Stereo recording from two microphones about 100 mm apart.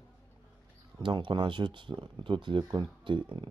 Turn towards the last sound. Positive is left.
turn(degrees=-55)  # may be behind; listen again after turning